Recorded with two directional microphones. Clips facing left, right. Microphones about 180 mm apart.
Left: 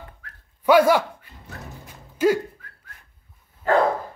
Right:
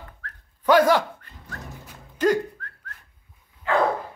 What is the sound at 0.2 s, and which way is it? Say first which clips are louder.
Dog: right 3 dB; 10° left (ahead or behind).